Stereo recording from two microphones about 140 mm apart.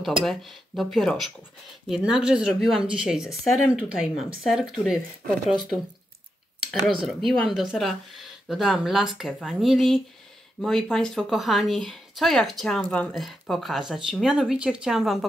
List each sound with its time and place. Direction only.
0.0 s speech: centre (ahead or behind)
7.1 s speech: centre (ahead or behind)